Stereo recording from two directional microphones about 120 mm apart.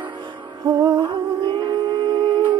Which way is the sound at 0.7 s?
35° right (ahead or behind).